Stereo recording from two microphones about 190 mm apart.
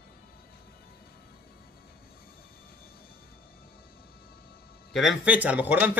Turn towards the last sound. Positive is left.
turn(degrees=-10)  # may be behind; listen again after turning